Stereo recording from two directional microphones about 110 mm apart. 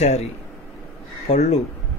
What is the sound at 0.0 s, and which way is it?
Speech, 85° left.